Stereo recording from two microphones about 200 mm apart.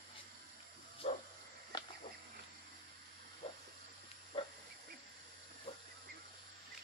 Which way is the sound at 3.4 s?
30° left (ahead or behind).